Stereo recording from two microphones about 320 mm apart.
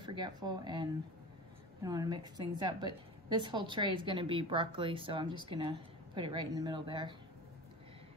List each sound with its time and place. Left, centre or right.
0.0 s a woman's voice: centre